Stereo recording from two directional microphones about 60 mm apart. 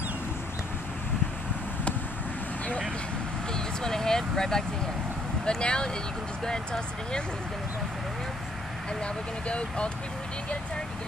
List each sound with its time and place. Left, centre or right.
3.5 s vehicle: centre
5.4 s speech: centre
9.0 s speech: centre